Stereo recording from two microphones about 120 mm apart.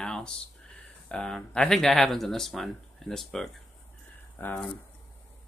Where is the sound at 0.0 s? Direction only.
5° left (ahead or behind).